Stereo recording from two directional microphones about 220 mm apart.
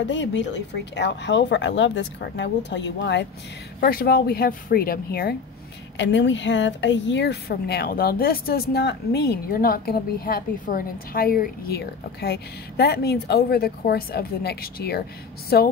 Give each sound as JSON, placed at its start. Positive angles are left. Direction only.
{"t": 0.0, "sound": "speech", "side_deg": 55}
{"t": 5.9, "sound": "speech", "side_deg": 55}